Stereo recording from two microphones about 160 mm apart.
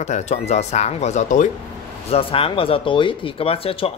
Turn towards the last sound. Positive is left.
turn(degrees=35)  # may be behind; listen again after turning